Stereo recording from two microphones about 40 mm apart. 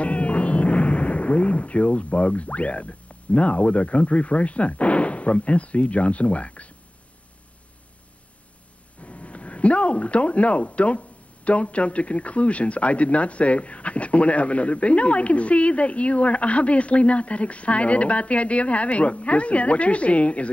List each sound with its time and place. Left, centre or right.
0.0 s speech: left
9.0 s speech: left